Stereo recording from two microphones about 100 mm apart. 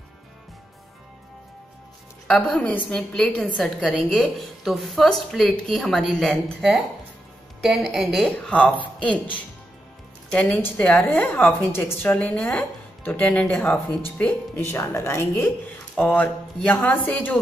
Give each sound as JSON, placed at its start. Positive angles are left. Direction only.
{"t": 2.2, "sound": "a woman's voice", "side_deg": 5}
{"t": 8.5, "sound": "a woman's voice", "side_deg": 10}